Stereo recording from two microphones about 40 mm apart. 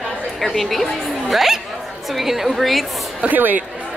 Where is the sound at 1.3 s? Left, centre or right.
Centre.